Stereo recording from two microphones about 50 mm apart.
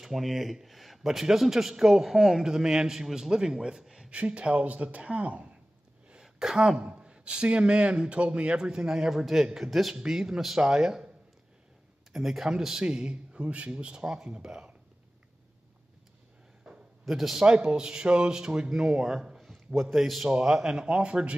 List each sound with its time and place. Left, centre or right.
0.0 s a man's voice: centre
4.1 s a man's voice: right
6.0 s a sound: centre
6.8 s a man's voice: centre
12.1 s a man's voice: centre
16.6 s a sound: centre
17.0 s a man's voice: centre
17.5 s a man's voice: centre